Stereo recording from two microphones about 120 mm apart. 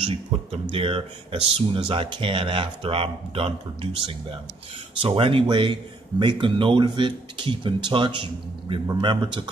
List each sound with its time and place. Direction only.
0.1 s speech: 50° right (ahead or behind)